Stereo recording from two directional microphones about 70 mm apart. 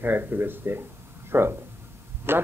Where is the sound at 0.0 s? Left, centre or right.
Right.